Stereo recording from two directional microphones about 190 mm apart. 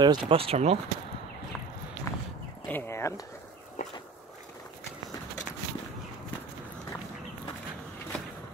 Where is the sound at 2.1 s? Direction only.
15° left (ahead or behind).